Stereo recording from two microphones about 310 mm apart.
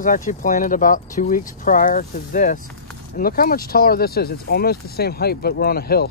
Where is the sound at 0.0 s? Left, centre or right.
Left.